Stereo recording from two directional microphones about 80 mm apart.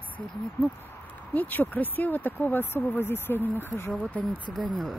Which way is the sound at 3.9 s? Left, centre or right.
Centre.